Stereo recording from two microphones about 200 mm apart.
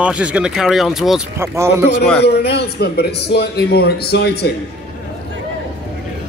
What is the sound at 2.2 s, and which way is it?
A man's voice, 55° left (ahead or behind).